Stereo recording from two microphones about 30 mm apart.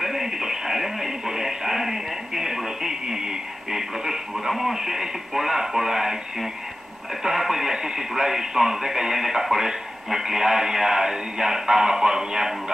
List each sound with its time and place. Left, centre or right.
0.0 s music: centre
4.5 s speech: centre